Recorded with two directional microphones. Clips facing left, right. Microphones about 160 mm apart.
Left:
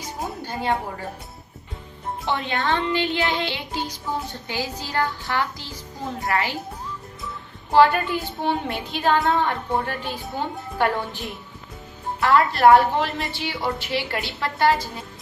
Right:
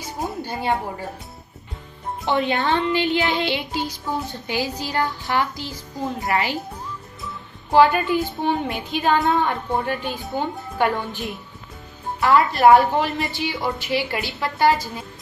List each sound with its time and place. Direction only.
0.2 s music: centre (ahead or behind)
2.3 s child singing: 20° right (ahead or behind)
6.2 s a child's voice: 20° right (ahead or behind)
7.7 s a woman's voice: centre (ahead or behind)